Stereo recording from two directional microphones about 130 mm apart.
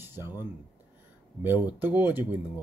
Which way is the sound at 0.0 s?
15° right (ahead or behind).